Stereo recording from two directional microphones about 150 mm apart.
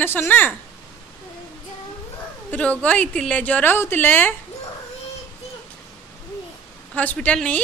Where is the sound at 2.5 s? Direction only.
10° left (ahead or behind).